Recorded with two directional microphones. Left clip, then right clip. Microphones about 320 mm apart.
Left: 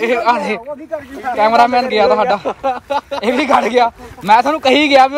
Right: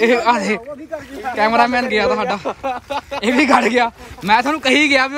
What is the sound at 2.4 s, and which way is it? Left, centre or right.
Speech, left.